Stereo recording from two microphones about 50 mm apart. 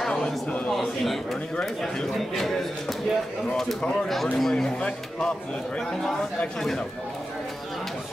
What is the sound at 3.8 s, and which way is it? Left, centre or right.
Speech, centre.